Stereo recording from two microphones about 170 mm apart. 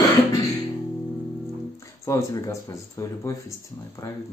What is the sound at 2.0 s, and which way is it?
Speech, 20° left (ahead or behind).